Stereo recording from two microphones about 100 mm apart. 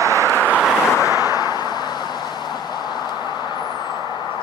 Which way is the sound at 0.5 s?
5° right (ahead or behind).